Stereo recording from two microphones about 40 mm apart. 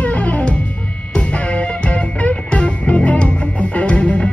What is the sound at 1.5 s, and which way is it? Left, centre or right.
Music, left.